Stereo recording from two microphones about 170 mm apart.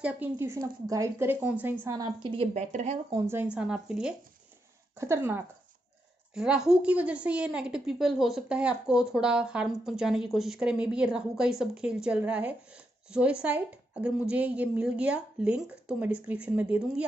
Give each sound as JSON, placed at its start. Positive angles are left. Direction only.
{"t": 0.0, "sound": "a woman's voice", "side_deg": -10}
{"t": 3.1, "sound": "speech", "side_deg": -15}
{"t": 3.5, "sound": "speech", "side_deg": -5}
{"t": 4.9, "sound": "speech", "side_deg": -15}
{"t": 6.3, "sound": "speech", "side_deg": -5}